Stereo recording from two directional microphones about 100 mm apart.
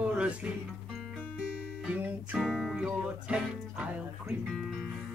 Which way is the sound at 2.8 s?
10° right (ahead or behind).